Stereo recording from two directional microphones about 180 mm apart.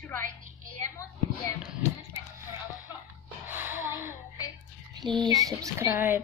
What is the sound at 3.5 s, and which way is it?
Gasp, 10° right (ahead or behind).